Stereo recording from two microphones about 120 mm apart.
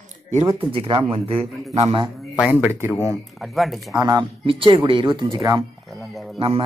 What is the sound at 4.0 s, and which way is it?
Speech, 35° right (ahead or behind).